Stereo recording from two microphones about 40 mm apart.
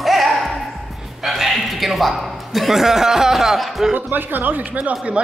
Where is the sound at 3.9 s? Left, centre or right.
Right.